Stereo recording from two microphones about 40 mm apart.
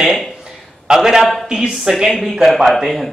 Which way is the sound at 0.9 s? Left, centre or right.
Centre.